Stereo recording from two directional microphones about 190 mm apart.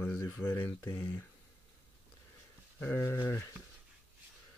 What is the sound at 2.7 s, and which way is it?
Speech, 10° left (ahead or behind).